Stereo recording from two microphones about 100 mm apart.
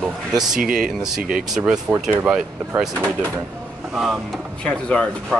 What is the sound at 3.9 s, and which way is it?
Speech, 5° right (ahead or behind).